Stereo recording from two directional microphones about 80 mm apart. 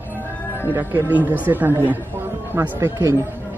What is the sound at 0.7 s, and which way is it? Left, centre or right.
Speech, right.